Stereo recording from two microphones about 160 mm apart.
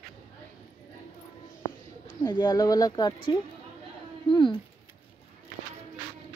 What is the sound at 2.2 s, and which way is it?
Speech, 25° left (ahead or behind).